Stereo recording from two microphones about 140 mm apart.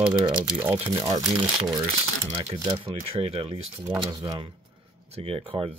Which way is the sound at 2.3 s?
40° right (ahead or behind).